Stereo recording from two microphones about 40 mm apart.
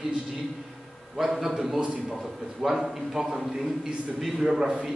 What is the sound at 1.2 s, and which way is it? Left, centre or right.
Speech, centre.